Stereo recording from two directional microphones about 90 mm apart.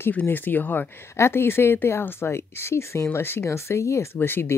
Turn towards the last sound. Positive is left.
turn(degrees=25)  # may be behind; listen again after turning